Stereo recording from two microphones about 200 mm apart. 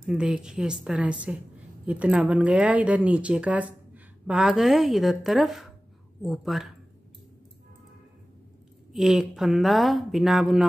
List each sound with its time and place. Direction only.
0.0 s speech: 5° right (ahead or behind)
8.9 s speech: centre (ahead or behind)